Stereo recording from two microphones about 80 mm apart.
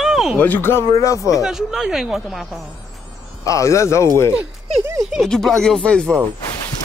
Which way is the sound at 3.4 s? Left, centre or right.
Left.